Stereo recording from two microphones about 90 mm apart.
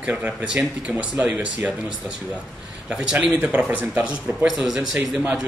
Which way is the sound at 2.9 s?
5° right (ahead or behind).